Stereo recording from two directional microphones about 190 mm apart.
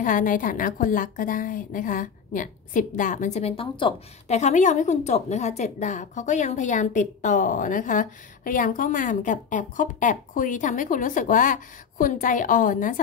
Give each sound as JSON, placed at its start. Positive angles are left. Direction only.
{"t": 0.0, "sound": "a woman's voice", "side_deg": 45}